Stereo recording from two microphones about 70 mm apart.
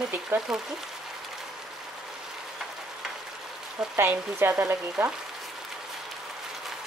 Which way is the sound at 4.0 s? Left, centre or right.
Right.